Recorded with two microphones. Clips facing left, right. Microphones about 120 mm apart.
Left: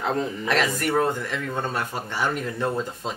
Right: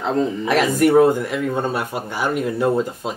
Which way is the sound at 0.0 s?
Centre (ahead or behind).